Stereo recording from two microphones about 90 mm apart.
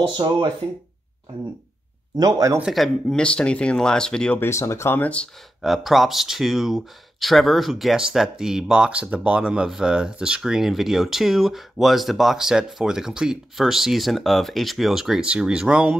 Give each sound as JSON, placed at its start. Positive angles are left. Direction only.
{"t": 0.2, "sound": "speech", "side_deg": -50}
{"t": 2.1, "sound": "speech", "side_deg": -45}
{"t": 2.6, "sound": "speech", "side_deg": 0}
{"t": 4.4, "sound": "speech", "side_deg": 30}
{"t": 5.6, "sound": "speech", "side_deg": 0}